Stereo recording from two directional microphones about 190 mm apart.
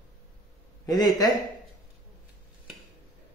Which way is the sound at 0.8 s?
20° left (ahead or behind).